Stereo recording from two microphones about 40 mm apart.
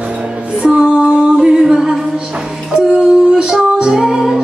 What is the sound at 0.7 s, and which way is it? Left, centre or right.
Music, right.